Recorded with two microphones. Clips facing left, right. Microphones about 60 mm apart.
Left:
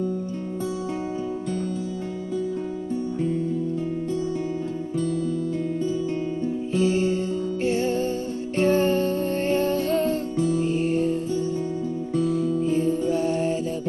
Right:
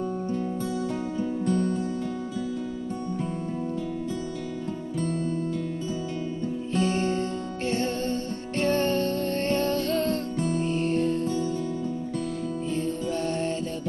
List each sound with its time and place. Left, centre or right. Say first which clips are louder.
6.7 s music: left 3 dB; centre
10.3 s music: left 4 dB; right
10.6 s music: left 3 dB; centre
12.3 s music: left 7 dB; centre